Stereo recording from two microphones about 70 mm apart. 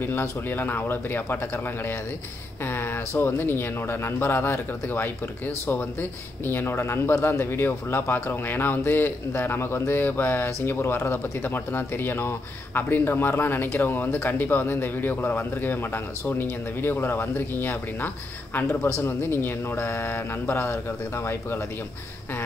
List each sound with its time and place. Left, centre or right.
0.0 s speech: left
2.6 s a sound: left
3.2 s speech: left